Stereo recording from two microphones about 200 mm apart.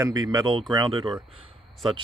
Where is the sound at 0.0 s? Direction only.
20° right (ahead or behind).